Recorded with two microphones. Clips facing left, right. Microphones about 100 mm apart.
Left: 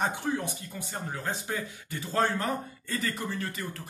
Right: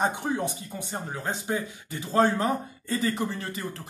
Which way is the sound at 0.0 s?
20° right (ahead or behind).